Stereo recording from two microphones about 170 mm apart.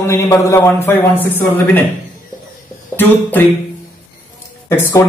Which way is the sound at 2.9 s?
10° left (ahead or behind).